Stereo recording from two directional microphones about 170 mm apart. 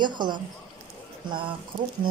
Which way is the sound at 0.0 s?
25° right (ahead or behind).